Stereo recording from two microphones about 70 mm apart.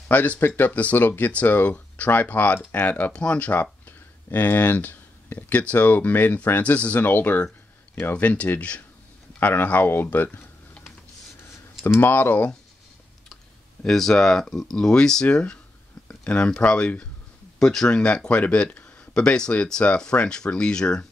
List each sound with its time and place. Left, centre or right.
0.1 s speech: left
12.0 s speech: left
13.8 s speech: centre